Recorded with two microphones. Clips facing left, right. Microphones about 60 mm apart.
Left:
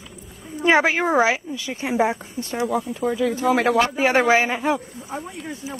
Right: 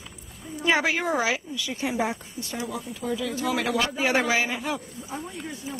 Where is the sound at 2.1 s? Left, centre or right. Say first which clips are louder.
Left 7 dB; left.